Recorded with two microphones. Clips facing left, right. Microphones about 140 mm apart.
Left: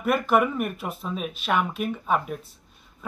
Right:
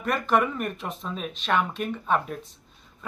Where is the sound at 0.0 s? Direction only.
5° left (ahead or behind).